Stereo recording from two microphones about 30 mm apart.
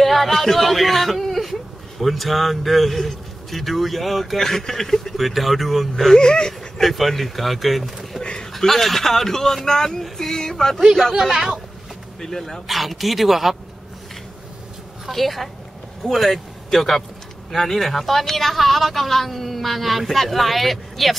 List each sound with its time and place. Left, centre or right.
0.0 s speech: centre
4.4 s a man's voice: centre
5.1 s speech: centre
6.1 s speech: left
6.8 s speech: centre
8.4 s a man's voice: centre
10.1 s a sound: centre
11.1 s speech: centre
12.2 s a man's voice: centre
12.6 s speech: centre
15.0 s a man's voice: centre